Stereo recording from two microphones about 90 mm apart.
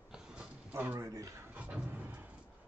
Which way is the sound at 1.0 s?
40° right (ahead or behind).